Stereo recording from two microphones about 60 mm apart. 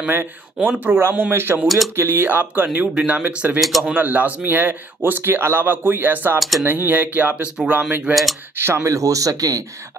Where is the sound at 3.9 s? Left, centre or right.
Right.